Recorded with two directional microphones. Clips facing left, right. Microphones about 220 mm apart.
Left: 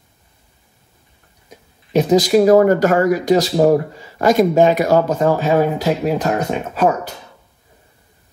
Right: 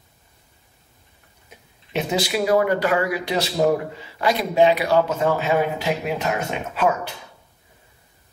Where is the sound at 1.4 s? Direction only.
40° left (ahead or behind).